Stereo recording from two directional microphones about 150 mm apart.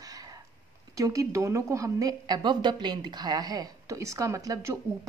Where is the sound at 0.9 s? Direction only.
20° right (ahead or behind).